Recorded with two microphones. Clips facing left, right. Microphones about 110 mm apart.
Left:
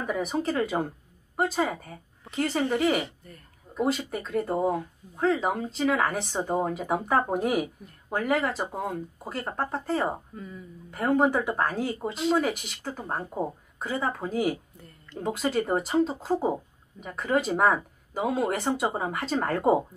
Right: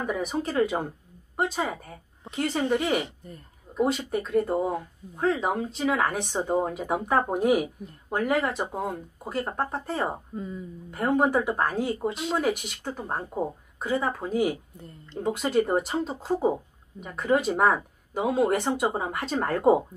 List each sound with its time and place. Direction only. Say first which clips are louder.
0.0 s speech: even; centre (ahead or behind)
3.2 s speech: right 5 dB; 20° right (ahead or behind)
3.7 s speech: right 2 dB; centre (ahead or behind)
10.3 s speech: right 6 dB; 25° right (ahead or behind)
10.9 s speech: even; centre (ahead or behind)